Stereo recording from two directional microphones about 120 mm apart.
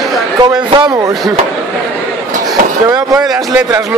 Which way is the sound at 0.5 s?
40° right (ahead or behind).